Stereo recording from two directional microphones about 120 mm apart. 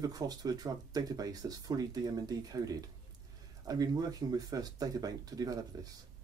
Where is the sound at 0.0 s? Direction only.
30° right (ahead or behind).